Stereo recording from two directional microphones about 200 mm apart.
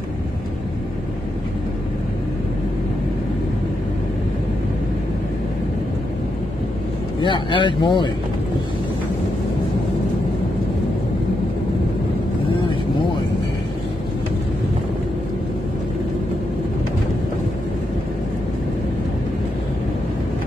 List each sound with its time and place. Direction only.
7.2 s speech: 25° left (ahead or behind)